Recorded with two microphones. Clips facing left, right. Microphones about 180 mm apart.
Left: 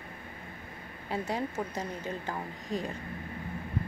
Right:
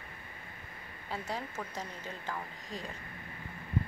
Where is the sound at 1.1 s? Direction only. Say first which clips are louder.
Left 6 dB; 20° left (ahead or behind).